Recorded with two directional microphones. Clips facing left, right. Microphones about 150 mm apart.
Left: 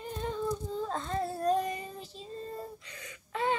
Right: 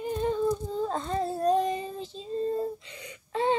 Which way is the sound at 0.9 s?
15° right (ahead or behind).